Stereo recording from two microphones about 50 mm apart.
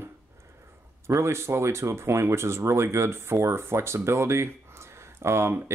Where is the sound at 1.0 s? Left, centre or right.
Right.